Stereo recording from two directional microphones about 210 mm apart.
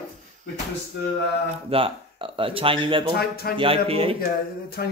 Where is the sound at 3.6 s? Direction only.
25° right (ahead or behind).